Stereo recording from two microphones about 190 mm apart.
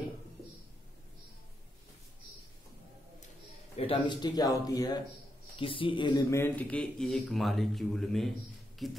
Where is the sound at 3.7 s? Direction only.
30° left (ahead or behind).